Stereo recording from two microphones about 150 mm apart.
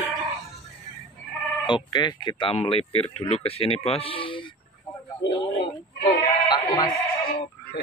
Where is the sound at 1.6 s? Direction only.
30° left (ahead or behind).